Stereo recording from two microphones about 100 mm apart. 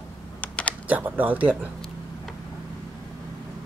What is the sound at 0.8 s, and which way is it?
Speech, 15° right (ahead or behind).